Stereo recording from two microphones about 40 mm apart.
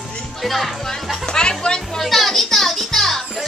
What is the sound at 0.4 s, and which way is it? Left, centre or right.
Speech, centre.